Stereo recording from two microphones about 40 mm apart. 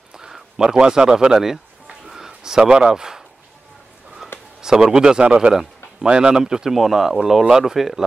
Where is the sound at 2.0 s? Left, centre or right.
Centre.